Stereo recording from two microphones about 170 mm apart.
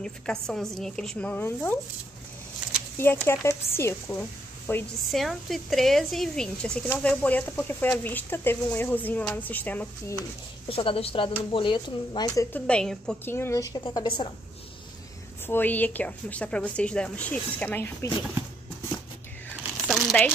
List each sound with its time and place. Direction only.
0.0 s speech: 5° left (ahead or behind)
3.0 s speech: 15° left (ahead or behind)
5.1 s speech: centre (ahead or behind)
10.7 s speech: 35° left (ahead or behind)
12.5 s speech: 5° left (ahead or behind)
13.8 s speech: 30° left (ahead or behind)
15.4 s speech: 10° left (ahead or behind)
19.9 s crumpling: centre (ahead or behind)